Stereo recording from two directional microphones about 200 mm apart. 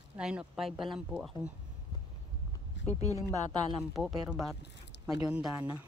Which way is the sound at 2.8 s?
65° left (ahead or behind).